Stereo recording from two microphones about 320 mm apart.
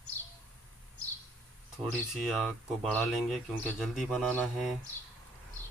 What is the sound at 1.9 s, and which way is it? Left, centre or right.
Speech, centre.